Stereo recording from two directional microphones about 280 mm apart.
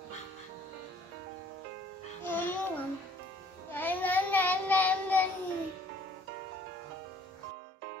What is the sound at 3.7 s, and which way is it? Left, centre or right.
Child singing, centre.